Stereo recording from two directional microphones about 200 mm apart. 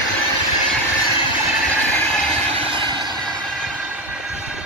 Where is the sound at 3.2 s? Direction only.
Centre (ahead or behind).